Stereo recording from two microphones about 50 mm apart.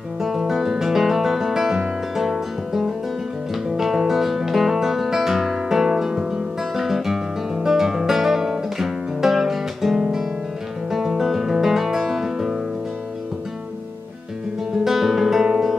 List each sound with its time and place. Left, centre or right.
0.2 s music: centre
14.9 s guitar: centre